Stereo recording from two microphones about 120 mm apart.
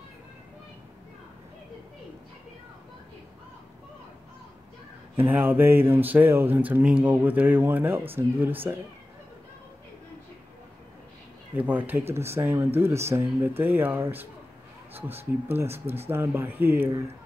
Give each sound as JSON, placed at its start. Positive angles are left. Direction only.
{"t": 5.1, "sound": "speech", "side_deg": -15}
{"t": 11.5, "sound": "speech", "side_deg": -15}